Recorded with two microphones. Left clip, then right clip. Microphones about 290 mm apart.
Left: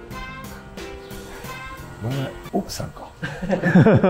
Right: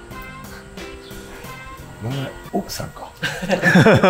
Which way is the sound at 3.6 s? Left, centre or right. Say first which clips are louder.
Right 4 dB; right.